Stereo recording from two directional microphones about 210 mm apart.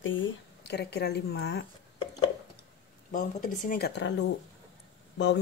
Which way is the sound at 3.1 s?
40° left (ahead or behind).